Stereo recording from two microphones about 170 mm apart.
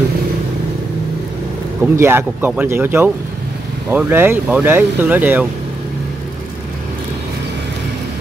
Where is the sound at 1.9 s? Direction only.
15° right (ahead or behind).